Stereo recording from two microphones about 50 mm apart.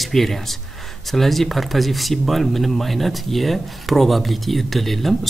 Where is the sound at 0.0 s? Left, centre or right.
Centre.